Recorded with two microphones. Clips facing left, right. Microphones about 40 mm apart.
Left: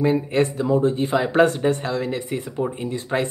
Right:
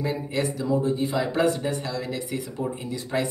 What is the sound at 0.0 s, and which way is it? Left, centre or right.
Speech, left.